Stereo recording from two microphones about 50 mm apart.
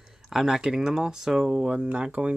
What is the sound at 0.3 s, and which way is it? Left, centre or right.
Speech, centre.